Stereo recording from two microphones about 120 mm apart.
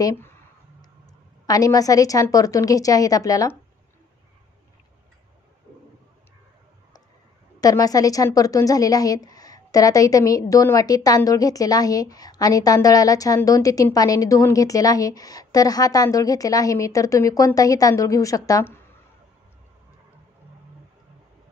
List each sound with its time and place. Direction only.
0.0 s speech: 20° left (ahead or behind)
1.4 s a woman's voice: 30° left (ahead or behind)
7.6 s a woman's voice: 30° left (ahead or behind)